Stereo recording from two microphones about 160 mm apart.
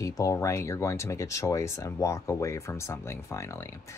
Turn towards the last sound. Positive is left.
turn(degrees=15)  # may be behind; listen again after turning